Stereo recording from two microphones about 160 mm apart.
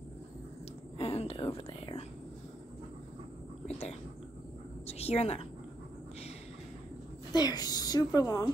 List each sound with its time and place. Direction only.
0.9 s speech: 40° left (ahead or behind)
3.6 s a sound: 40° left (ahead or behind)
7.3 s speech: 25° left (ahead or behind)